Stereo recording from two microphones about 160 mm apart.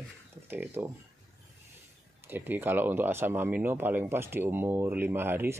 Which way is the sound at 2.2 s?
10° right (ahead or behind).